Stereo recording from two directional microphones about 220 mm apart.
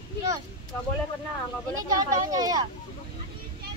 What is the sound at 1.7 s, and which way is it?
Speech, 15° right (ahead or behind).